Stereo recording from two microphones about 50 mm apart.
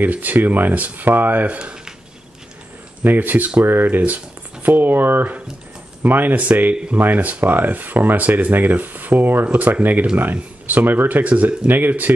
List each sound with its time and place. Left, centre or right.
0.0 s speech: right
1.6 s a sound: centre
3.0 s speech: right
9.5 s speech: right